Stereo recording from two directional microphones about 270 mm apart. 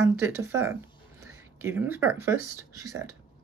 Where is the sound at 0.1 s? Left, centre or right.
Centre.